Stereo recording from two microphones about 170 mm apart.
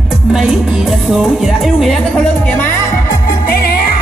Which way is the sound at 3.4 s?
60° left (ahead or behind).